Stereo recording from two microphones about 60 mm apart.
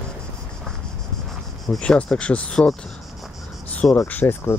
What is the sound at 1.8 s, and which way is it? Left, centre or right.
Speech, centre.